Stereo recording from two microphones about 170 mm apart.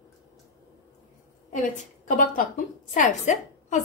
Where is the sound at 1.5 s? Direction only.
50° left (ahead or behind).